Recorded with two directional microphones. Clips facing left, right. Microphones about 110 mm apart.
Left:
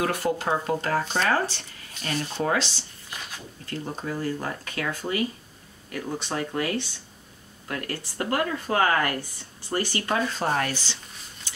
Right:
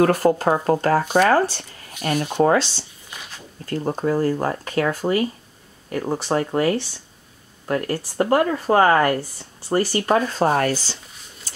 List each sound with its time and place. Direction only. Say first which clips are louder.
0.0 s speech: right 9 dB; 45° right (ahead or behind)
2.0 s speech: right 7 dB; 50° right (ahead or behind)
2.4 s speech: right 9 dB; 40° right (ahead or behind)
3.1 s a sound: left 1 dB; centre (ahead or behind)
3.6 s speech: right 10 dB; 45° right (ahead or behind)
11.5 s a sound: right 3 dB; 40° right (ahead or behind)